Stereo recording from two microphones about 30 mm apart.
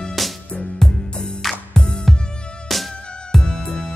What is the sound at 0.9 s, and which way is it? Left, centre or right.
Music, left.